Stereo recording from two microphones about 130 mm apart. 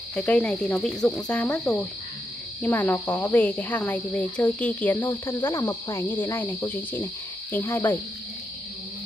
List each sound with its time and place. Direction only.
0.1 s speech: 10° left (ahead or behind)